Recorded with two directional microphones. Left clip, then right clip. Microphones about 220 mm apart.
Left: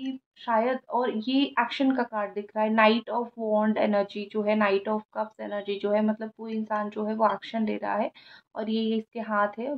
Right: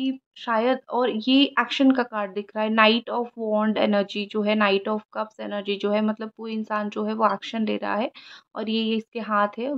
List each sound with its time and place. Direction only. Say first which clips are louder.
0.5 s speech: right 2 dB; 40° right (ahead or behind)